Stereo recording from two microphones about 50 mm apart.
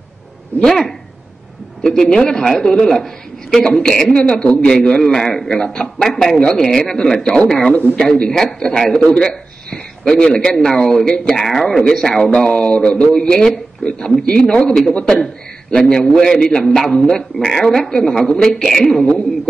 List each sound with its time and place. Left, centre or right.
0.6 s a man's voice: centre
2.0 s a man's voice: centre
7.7 s speech: left
8.1 s a man's voice: centre
12.3 s a man's voice: left; by 19.2 s centre